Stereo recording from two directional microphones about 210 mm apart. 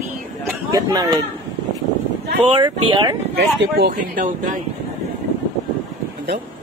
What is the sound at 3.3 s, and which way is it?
Speech, 50° right (ahead or behind).